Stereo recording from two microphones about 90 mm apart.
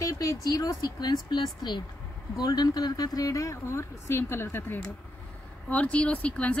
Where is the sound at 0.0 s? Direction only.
40° left (ahead or behind).